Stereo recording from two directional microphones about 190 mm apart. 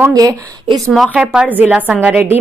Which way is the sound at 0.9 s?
5° right (ahead or behind).